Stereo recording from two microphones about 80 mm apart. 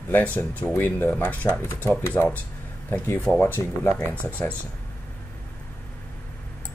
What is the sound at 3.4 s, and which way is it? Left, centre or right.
Speech, left.